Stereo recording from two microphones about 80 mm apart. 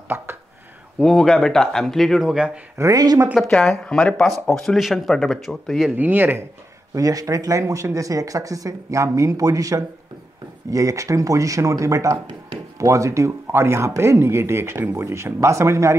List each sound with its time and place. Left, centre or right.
0.1 s speech: right
0.9 s speech: centre
2.8 s speech: right
3.8 s speech: centre
5.9 s speech: right
6.9 s speech: right